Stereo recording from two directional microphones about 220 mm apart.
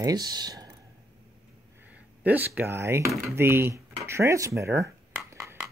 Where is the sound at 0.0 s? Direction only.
15° right (ahead or behind).